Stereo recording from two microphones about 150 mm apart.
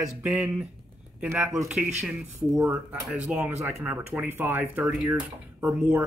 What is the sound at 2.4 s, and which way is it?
Speech, 15° right (ahead or behind).